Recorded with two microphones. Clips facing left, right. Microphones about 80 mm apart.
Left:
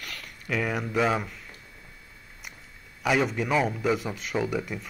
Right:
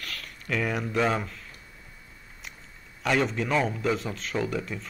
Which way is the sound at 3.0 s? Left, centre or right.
Centre.